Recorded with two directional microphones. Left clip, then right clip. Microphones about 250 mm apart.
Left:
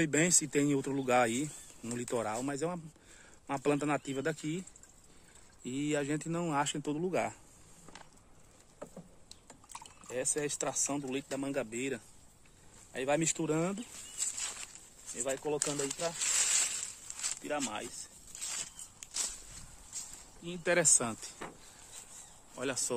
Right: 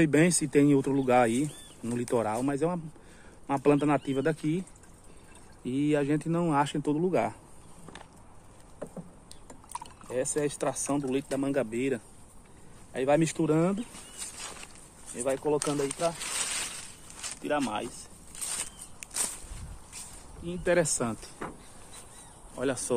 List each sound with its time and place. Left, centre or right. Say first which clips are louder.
0.0 s speech: right 6 dB; centre
9.5 s a sound: right 9 dB; centre
10.0 s speech: right 5 dB; centre
16.2 s speech: left 1 dB; left
17.4 s speech: right 9 dB; centre
20.4 s speech: right 3 dB; left
22.6 s speech: right 6 dB; centre